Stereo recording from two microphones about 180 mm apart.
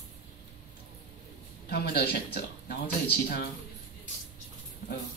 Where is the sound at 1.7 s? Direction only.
65° left (ahead or behind).